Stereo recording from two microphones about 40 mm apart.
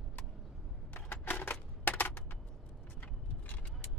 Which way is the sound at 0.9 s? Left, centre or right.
Left.